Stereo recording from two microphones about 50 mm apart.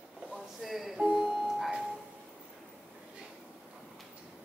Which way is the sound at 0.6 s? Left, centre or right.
Centre.